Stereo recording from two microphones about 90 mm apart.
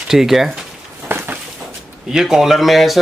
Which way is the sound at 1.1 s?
20° right (ahead or behind).